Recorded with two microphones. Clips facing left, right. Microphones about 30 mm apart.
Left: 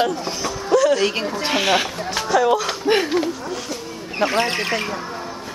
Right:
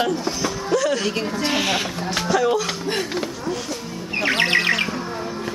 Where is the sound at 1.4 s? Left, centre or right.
Centre.